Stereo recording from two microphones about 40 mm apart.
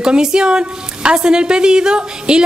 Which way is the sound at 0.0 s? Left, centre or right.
Centre.